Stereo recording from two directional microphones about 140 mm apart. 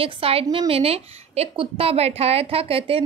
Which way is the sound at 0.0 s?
45° right (ahead or behind).